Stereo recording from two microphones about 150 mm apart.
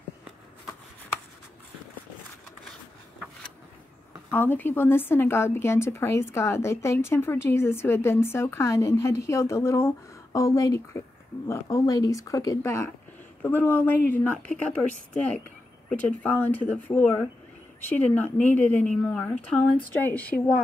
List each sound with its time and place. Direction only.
4.3 s a woman's voice: 10° left (ahead or behind)